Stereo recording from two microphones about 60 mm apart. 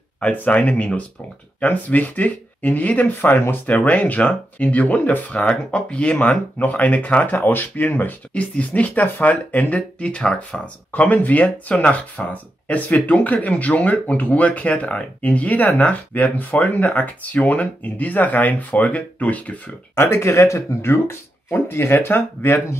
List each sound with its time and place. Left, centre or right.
0.2 s speech: left
3.2 s speech: left
3.6 s speech: left
10.9 s speech: left
20.0 s speech: left